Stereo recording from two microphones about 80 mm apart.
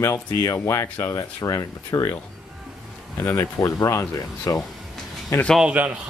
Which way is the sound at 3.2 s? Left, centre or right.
Left.